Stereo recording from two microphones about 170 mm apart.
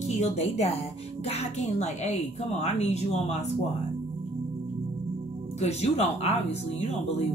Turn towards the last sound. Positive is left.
turn(degrees=40)  # may be behind; listen again after turning